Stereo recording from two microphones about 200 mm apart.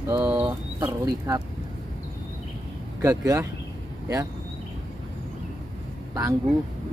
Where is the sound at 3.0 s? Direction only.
15° right (ahead or behind).